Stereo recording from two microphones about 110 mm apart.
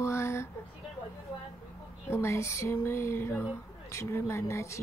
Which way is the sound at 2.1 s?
25° left (ahead or behind).